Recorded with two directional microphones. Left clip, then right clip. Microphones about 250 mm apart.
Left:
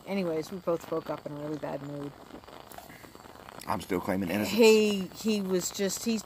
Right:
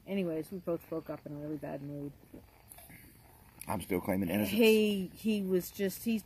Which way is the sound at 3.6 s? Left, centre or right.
Centre.